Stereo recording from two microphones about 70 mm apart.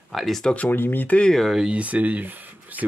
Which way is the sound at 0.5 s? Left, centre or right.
Left.